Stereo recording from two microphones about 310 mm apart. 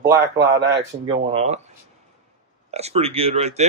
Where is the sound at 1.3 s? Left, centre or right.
Centre.